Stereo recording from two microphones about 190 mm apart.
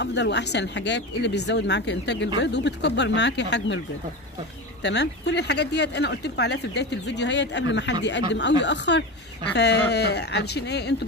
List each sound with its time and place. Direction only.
0.0 s speech: 65° left (ahead or behind)
4.8 s speech: 65° left (ahead or behind)